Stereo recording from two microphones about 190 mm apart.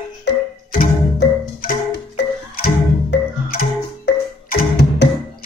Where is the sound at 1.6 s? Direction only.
55° left (ahead or behind).